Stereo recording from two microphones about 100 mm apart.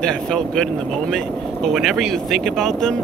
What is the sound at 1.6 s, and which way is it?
Speech, centre (ahead or behind).